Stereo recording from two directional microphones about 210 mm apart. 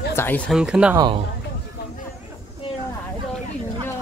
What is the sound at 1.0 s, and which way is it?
Speech, 20° right (ahead or behind).